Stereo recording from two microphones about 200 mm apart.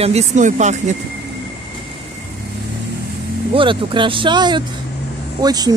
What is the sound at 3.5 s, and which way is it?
Speech, 25° right (ahead or behind).